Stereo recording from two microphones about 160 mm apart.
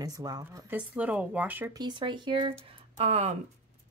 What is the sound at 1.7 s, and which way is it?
Speech, 30° right (ahead or behind).